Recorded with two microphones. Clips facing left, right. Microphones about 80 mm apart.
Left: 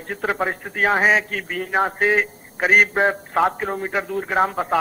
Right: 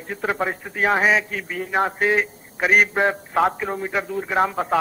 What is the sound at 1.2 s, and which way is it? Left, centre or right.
Speech, left.